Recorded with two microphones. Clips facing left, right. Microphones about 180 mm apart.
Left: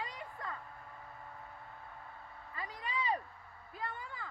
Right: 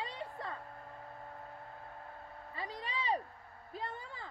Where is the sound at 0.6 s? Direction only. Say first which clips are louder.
Right 3 dB; 40° right (ahead or behind).